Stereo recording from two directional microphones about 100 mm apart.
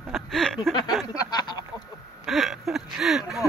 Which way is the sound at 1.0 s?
40° left (ahead or behind).